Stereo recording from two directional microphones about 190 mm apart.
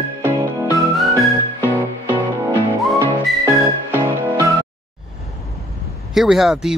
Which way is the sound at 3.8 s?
15° right (ahead or behind).